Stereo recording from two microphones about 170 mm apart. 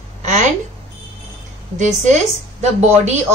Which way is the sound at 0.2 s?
45° right (ahead or behind).